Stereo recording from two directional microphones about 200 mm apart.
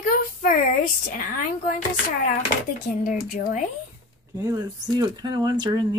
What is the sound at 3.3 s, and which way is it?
Speech, 45° left (ahead or behind).